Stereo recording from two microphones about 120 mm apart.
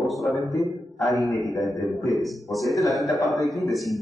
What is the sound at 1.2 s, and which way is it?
Speech, 30° left (ahead or behind).